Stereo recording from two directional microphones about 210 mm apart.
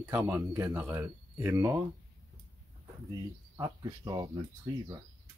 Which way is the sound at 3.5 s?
15° right (ahead or behind).